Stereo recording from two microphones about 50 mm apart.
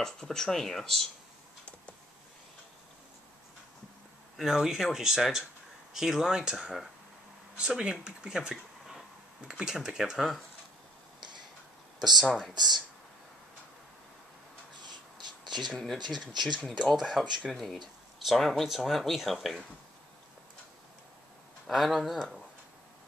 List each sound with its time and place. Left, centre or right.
0.0 s speech: centre
4.5 s speech: centre
7.5 s speech: centre
12.0 s speech: centre
15.7 s speech: centre
16.1 s speech: centre
17.5 s speech: centre
18.2 s speech: centre
21.6 s speech: centre